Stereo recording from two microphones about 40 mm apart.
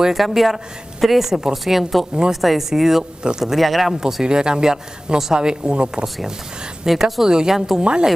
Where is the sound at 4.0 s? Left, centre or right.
Centre.